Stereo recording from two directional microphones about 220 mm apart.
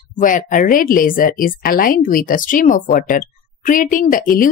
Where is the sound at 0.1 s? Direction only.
35° left (ahead or behind).